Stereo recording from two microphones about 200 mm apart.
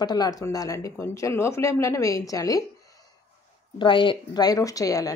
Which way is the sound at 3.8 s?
25° left (ahead or behind).